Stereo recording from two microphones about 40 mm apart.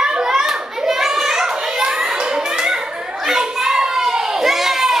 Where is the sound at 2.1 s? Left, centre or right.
Right.